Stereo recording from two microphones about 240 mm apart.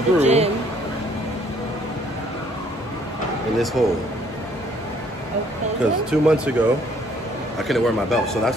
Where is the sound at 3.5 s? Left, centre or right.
Centre.